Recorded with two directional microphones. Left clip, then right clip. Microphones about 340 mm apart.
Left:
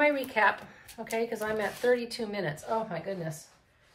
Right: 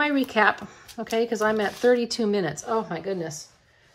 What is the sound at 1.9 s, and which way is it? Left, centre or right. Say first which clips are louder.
Speech: right 7 dB; right.